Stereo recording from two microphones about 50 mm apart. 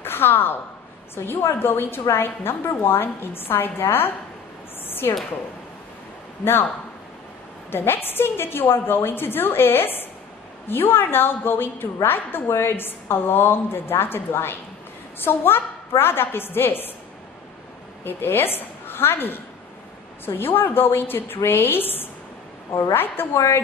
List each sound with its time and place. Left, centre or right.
0.0 s a woman's voice: left
4.8 s a sound: left
7.7 s a woman's voice: left
18.0 s a woman's voice: left
23.3 s a woman's voice: left